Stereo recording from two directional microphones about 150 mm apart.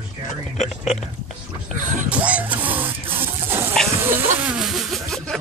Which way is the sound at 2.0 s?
10° right (ahead or behind).